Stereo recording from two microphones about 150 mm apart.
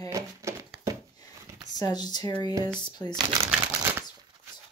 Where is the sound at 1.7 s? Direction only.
25° left (ahead or behind).